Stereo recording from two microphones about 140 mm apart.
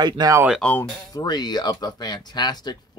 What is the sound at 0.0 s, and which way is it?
Speech, 30° right (ahead or behind).